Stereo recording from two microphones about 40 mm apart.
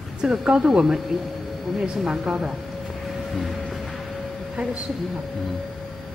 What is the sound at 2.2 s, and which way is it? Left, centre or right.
Speech, centre.